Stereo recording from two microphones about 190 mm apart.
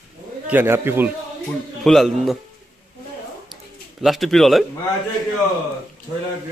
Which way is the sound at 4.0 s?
Centre (ahead or behind).